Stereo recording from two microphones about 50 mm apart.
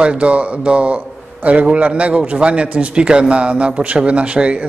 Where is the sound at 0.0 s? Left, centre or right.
Right.